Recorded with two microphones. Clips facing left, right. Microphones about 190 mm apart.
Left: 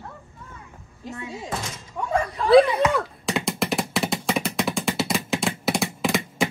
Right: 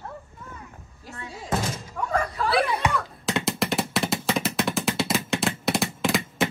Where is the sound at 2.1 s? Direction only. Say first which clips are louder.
Left 7 dB; 20° left (ahead or behind).